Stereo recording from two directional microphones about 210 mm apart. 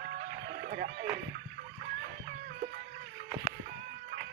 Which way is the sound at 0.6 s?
45° right (ahead or behind).